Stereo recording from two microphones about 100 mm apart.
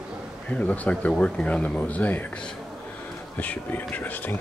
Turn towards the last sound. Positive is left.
turn(degrees=20)  # may be behind; listen again after turning